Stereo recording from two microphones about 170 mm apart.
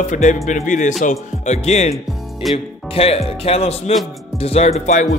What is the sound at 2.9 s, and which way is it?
Speech, 35° left (ahead or behind).